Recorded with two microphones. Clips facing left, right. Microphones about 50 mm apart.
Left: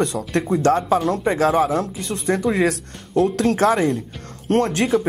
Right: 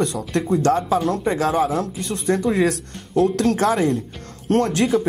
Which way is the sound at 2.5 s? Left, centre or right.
Centre.